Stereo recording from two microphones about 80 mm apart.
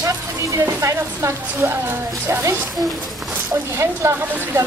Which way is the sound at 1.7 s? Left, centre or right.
Right.